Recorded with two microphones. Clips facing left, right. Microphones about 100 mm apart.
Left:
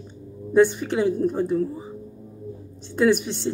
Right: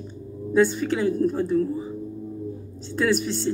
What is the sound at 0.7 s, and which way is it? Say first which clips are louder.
Speech: even; 15° left (ahead or behind).